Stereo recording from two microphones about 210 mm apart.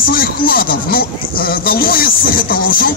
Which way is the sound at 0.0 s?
45° left (ahead or behind).